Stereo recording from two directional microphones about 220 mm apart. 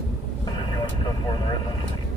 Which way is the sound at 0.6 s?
20° left (ahead or behind).